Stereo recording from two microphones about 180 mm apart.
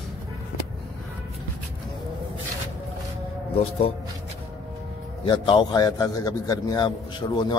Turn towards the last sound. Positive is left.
turn(degrees=25)  # may be behind; listen again after turning